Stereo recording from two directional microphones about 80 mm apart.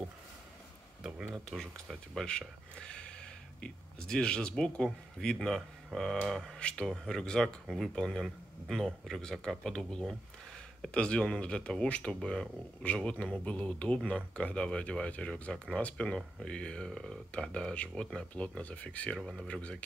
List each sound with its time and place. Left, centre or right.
1.0 s speech: centre
1.5 s speech: centre
19.1 s speech: centre
19.4 s speech: centre